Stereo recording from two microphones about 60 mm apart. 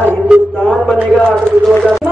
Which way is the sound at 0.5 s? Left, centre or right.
Centre.